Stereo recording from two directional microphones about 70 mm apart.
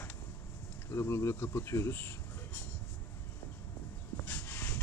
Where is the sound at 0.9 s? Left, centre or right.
Left.